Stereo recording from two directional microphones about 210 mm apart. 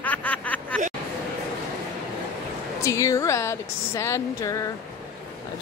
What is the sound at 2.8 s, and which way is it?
Speech, 15° left (ahead or behind).